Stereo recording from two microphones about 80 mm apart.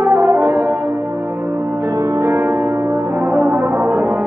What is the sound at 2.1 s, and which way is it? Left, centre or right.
Music, right.